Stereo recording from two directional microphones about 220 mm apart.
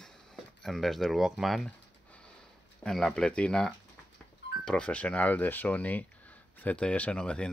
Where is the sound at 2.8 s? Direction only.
Centre (ahead or behind).